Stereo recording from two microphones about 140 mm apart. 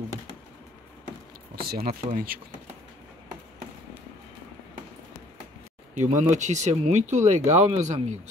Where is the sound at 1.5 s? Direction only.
90° right.